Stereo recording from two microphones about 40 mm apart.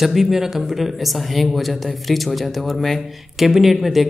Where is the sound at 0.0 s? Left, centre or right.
Centre.